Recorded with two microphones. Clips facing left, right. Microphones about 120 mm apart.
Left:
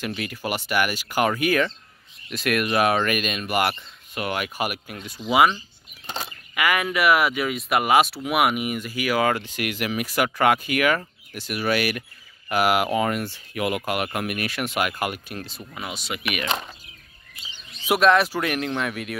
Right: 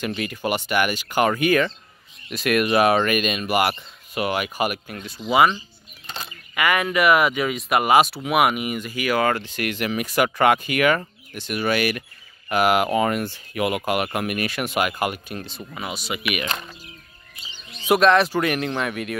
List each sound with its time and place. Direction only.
0.0 s speech: centre (ahead or behind)
17.8 s speech: 5° left (ahead or behind)